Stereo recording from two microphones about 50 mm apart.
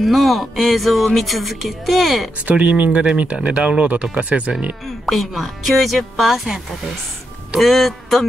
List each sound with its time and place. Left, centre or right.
0.0 s speech: centre
2.4 s speech: right
5.0 s speech: centre